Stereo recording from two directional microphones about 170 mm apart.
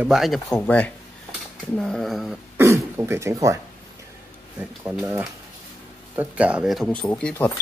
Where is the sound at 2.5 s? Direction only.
15° right (ahead or behind).